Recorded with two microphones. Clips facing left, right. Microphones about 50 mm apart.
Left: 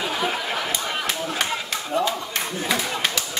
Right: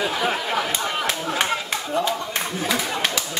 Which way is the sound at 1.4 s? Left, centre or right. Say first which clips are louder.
Right 2 dB; right.